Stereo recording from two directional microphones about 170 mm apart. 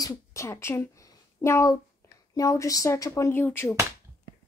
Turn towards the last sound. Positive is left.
turn(degrees=10)  # may be behind; listen again after turning